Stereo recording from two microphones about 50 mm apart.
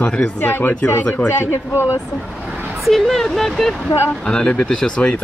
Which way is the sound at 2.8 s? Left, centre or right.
Centre.